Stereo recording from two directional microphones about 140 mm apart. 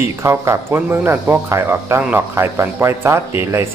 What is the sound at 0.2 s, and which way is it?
Speech, 20° right (ahead or behind).